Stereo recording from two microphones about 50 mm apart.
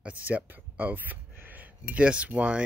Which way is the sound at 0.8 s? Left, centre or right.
Right.